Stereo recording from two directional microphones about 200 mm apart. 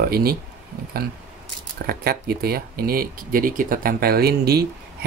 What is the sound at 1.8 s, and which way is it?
Speech, 50° right (ahead or behind).